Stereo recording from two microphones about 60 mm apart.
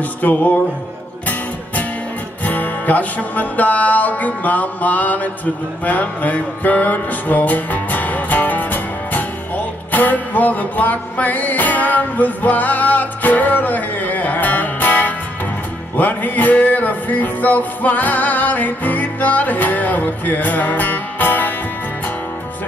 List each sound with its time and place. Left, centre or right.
0.2 s music: left
2.4 s music: left